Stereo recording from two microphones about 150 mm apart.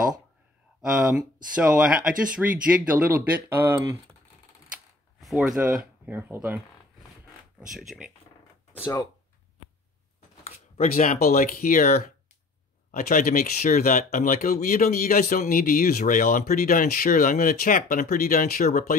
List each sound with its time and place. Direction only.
0.8 s speech: 5° right (ahead or behind)
5.2 s speech: centre (ahead or behind)
6.0 s speech: 15° right (ahead or behind)
7.7 s speech: centre (ahead or behind)
10.4 s speech: 55° left (ahead or behind); by 12.0 s 70° left (ahead or behind)
12.9 s speech: 60° left (ahead or behind)
13.6 s speech: 70° left (ahead or behind)
16.0 s speech: 65° left (ahead or behind)